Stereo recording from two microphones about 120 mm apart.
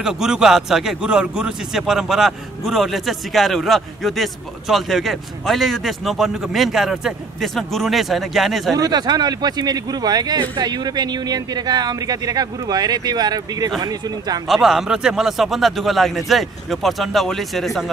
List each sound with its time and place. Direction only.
0.0 s a man's voice: 5° right (ahead or behind)
8.7 s speech: 35° right (ahead or behind)
14.5 s a man's voice: centre (ahead or behind)